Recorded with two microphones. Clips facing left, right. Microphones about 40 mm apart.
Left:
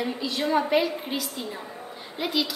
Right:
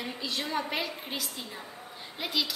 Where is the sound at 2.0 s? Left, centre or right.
Centre.